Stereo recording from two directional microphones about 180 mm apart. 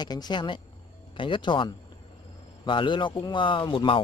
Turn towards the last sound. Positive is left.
turn(degrees=30)  # may be behind; listen again after turning